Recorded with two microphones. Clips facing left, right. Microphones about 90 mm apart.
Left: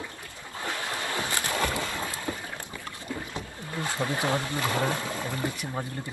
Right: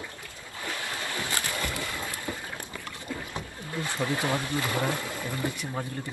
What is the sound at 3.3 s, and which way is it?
Rowboat, 20° left (ahead or behind).